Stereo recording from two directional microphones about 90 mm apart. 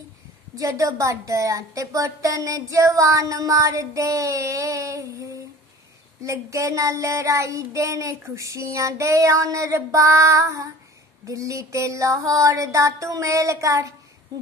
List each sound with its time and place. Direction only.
0.6 s a woman's voice: 35° right (ahead or behind)